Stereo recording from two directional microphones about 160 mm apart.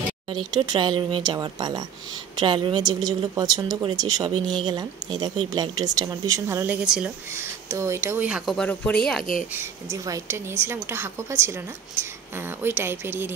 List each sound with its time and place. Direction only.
0.3 s a woman's voice: 30° right (ahead or behind)
4.4 s speech: 5° left (ahead or behind)
4.6 s a woman's voice: 25° right (ahead or behind)
6.6 s a woman's voice: 5° right (ahead or behind)
7.3 s a woman's voice: 15° right (ahead or behind)
8.5 s speech: 5° left (ahead or behind)
9.5 s a woman's voice: 15° right (ahead or behind)